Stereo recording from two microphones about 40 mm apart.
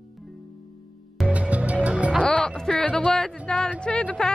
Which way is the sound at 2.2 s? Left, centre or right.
Centre.